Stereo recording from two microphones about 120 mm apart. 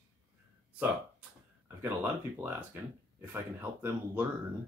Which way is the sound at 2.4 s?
15° right (ahead or behind).